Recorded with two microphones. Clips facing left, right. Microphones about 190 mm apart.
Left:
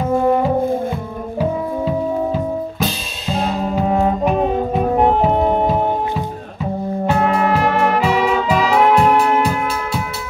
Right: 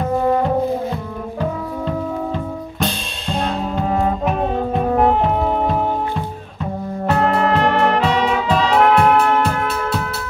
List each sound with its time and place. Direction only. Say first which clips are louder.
1.4 s music: left 4 dB; 5° left (ahead or behind)